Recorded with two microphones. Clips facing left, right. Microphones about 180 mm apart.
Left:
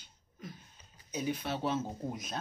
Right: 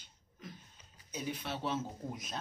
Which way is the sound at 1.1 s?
Centre (ahead or behind).